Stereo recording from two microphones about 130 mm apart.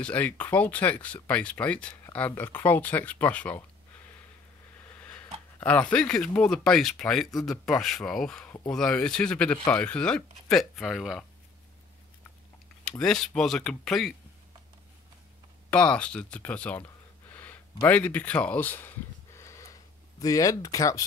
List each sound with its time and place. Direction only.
0.0 s speech: 10° left (ahead or behind)
5.0 s dog: 10° left (ahead or behind)
5.6 s speech: 10° left (ahead or behind)
13.0 s speech: 5° left (ahead or behind)
15.7 s speech: 10° left (ahead or behind)
19.3 s a sound: 25° left (ahead or behind)